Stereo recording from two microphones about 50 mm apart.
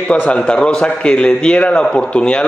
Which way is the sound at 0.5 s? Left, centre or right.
Centre.